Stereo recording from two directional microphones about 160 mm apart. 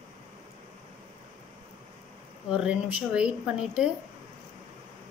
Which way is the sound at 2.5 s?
5° right (ahead or behind).